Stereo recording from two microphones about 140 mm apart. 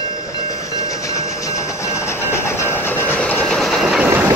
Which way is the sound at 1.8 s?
20° left (ahead or behind).